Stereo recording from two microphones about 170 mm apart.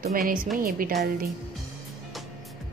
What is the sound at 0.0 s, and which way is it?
Speech, 60° right (ahead or behind).